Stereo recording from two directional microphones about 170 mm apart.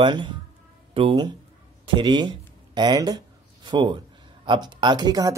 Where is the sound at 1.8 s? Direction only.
30° right (ahead or behind).